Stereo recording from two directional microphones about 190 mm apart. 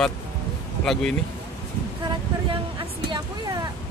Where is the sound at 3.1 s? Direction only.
20° right (ahead or behind).